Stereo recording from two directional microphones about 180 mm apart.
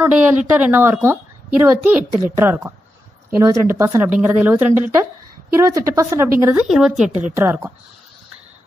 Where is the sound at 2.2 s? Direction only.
10° right (ahead or behind).